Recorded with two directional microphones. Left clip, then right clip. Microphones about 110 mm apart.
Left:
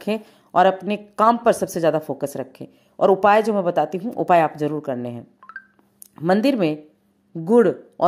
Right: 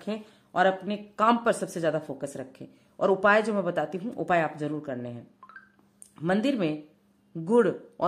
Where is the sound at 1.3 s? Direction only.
45° left (ahead or behind).